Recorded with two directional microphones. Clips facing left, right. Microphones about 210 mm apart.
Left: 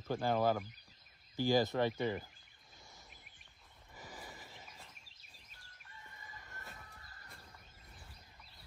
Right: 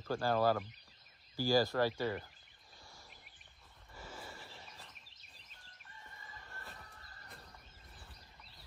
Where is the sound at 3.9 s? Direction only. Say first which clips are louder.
Right 2 dB; 15° left (ahead or behind).